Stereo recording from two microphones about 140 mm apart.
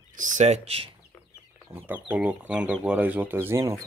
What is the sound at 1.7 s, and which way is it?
Speech, 15° right (ahead or behind).